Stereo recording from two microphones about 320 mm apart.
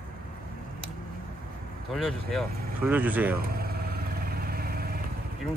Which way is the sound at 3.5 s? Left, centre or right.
Right.